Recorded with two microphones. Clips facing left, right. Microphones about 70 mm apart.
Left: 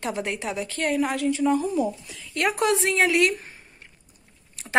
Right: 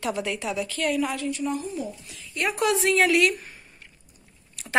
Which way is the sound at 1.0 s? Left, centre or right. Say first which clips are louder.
Left 5 dB; left.